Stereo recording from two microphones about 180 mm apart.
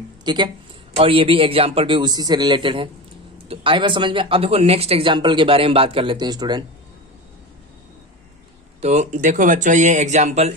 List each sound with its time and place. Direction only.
0.2 s speech: 25° right (ahead or behind)
8.8 s speech: 40° right (ahead or behind)